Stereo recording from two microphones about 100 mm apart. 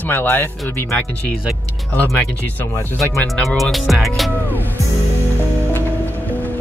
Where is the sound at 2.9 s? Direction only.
Centre (ahead or behind).